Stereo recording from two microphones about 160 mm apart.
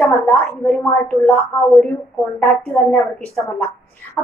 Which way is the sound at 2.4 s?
10° left (ahead or behind).